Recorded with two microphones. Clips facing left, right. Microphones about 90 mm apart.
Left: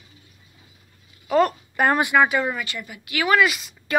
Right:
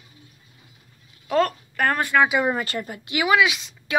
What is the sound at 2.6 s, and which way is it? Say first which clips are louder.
Speech: right 4 dB; 40° right (ahead or behind).